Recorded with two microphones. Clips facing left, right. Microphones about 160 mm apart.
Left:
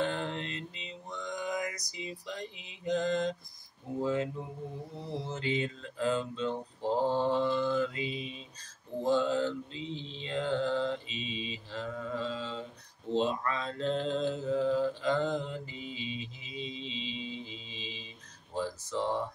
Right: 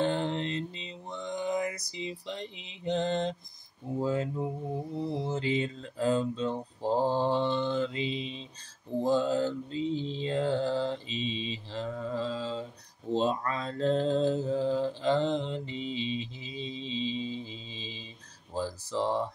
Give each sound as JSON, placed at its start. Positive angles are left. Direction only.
{"t": 0.0, "sound": "mantra", "side_deg": -30}
{"t": 5.3, "sound": "mantra", "side_deg": -30}
{"t": 18.5, "sound": "speech", "side_deg": -30}